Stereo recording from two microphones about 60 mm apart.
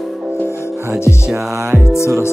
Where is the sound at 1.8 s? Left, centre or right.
Left.